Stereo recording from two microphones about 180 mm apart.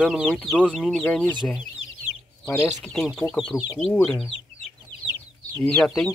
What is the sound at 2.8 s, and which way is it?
Speech, centre (ahead or behind).